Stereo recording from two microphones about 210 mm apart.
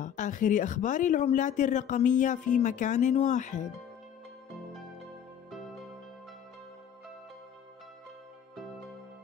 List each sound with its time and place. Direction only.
0.0 s speech: 35° left (ahead or behind)